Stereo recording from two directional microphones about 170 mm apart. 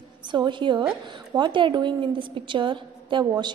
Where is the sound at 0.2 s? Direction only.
25° right (ahead or behind).